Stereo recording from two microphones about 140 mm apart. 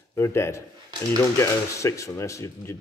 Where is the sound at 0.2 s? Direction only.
20° left (ahead or behind).